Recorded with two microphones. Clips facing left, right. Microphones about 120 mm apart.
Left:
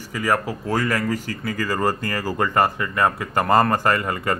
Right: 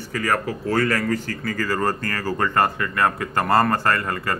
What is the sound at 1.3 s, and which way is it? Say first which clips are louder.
Speech: even; 50° right (ahead or behind).